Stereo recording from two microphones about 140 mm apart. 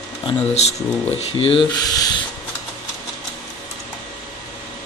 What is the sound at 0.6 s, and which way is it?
Speech, 50° left (ahead or behind).